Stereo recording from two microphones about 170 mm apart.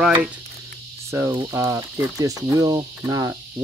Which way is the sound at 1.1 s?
15° right (ahead or behind).